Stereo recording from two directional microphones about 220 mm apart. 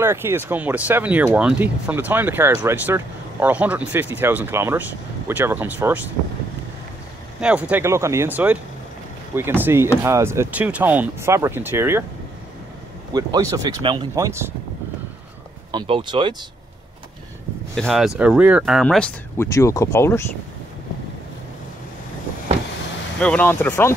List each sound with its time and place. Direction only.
0.0 s speech: 10° right (ahead or behind)
7.3 s speech: 5° right (ahead or behind)
13.1 s speech: 15° right (ahead or behind)
15.7 s speech: 20° right (ahead or behind)
17.7 s speech: centre (ahead or behind)
23.1 s speech: 5° left (ahead or behind)